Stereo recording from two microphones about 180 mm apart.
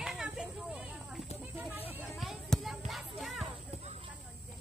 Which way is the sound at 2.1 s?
Centre (ahead or behind).